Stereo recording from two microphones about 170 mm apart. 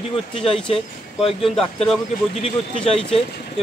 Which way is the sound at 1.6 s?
5° left (ahead or behind).